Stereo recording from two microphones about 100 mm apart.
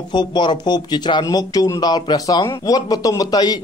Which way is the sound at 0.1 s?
50° left (ahead or behind).